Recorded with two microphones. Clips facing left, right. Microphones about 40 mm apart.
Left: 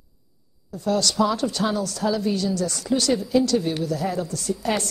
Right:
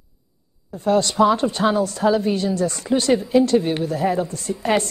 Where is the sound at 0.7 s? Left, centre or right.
Right.